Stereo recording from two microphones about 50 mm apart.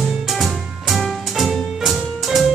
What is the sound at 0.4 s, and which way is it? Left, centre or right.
Music, centre.